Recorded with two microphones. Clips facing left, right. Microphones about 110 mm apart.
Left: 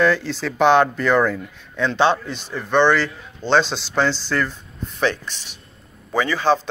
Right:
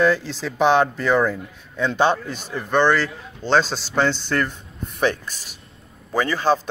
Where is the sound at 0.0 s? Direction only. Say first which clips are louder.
Left 1 dB; 5° right (ahead or behind).